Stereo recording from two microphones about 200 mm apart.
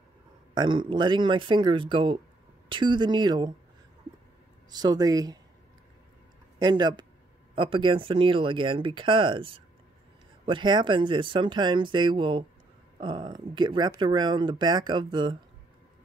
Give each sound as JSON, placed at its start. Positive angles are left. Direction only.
{"t": 0.6, "sound": "speech", "side_deg": -25}
{"t": 4.6, "sound": "speech", "side_deg": -20}
{"t": 6.6, "sound": "speech", "side_deg": -20}